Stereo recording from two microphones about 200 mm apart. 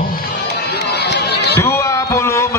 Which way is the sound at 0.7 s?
55° left (ahead or behind).